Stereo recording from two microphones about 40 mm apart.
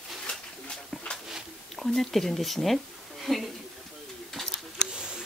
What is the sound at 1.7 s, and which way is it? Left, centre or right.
Speech, centre.